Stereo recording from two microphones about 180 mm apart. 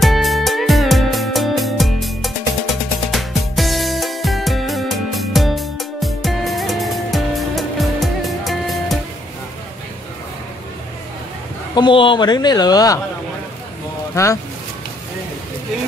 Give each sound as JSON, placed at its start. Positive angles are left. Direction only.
{"t": 0.0, "sound": "music", "side_deg": 0}
{"t": 11.7, "sound": "a man's voice", "side_deg": 25}
{"t": 14.1, "sound": "speech", "side_deg": 15}